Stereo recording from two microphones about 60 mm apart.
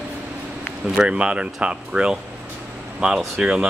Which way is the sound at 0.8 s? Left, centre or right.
Centre.